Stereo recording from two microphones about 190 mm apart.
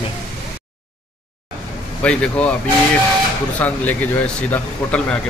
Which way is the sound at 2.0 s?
5° left (ahead or behind).